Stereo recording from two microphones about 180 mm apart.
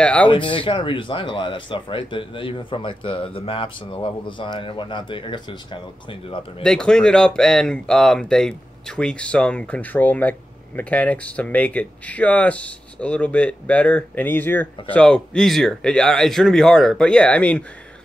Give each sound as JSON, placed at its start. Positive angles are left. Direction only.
{"t": 0.0, "sound": "speech", "side_deg": 5}
{"t": 0.3, "sound": "speech", "side_deg": 30}
{"t": 6.6, "sound": "speech", "side_deg": 5}